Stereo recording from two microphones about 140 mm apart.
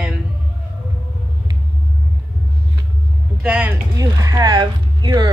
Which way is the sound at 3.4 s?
10° right (ahead or behind).